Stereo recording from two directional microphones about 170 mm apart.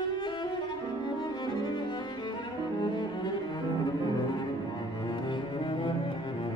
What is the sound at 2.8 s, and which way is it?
Cello, 25° left (ahead or behind).